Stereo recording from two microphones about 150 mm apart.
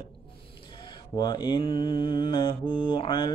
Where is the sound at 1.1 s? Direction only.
30° left (ahead or behind).